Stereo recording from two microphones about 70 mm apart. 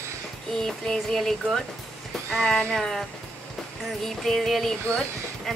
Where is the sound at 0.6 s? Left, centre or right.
Centre.